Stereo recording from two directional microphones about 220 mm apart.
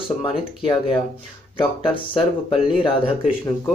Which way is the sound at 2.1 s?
25° left (ahead or behind).